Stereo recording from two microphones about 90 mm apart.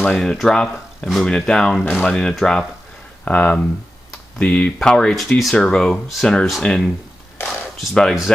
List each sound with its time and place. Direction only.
0.0 s speech: 5° left (ahead or behind)